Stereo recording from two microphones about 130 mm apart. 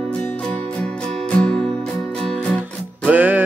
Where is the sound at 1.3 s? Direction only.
5° left (ahead or behind).